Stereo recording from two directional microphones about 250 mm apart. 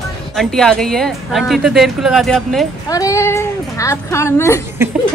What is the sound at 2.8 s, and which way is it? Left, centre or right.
Speech, centre.